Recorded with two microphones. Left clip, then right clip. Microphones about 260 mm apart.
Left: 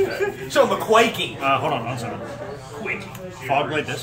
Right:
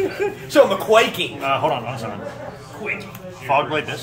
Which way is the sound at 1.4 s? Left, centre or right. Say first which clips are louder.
Right 1 dB; centre.